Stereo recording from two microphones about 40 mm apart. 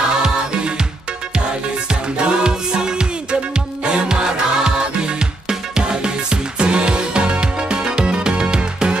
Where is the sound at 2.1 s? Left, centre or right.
Right.